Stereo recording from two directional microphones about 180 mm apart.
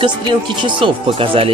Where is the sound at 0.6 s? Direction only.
30° right (ahead or behind).